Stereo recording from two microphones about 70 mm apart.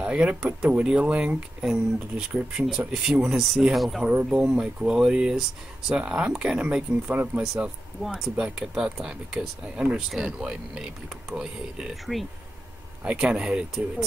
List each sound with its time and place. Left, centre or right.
0.0 s speech: centre
13.0 s speech: centre